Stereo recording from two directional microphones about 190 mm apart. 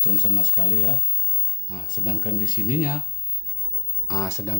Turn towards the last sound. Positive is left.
turn(degrees=15)  # may be behind; listen again after turning